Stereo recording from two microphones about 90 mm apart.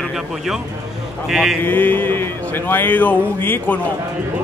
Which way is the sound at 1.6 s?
20° left (ahead or behind).